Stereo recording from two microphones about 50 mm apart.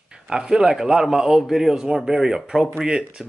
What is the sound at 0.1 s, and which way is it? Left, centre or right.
A man's voice, centre.